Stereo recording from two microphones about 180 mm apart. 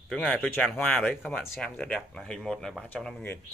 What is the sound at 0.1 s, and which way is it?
Speech, 5° left (ahead or behind).